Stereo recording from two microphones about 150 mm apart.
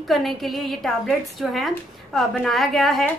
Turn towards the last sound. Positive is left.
turn(degrees=0)  # may be behind; listen again after turning